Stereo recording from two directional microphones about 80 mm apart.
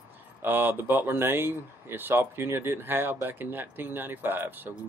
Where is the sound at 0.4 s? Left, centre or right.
Right.